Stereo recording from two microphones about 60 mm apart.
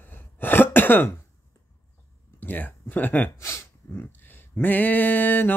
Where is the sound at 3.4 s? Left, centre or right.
Left.